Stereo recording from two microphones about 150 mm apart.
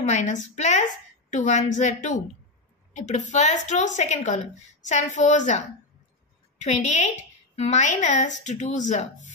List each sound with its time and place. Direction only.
0.1 s a woman's voice: 50° left (ahead or behind)
6.6 s a woman's voice: 50° left (ahead or behind)